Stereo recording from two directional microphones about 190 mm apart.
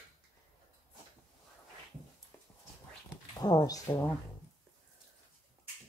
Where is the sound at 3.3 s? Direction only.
20° left (ahead or behind).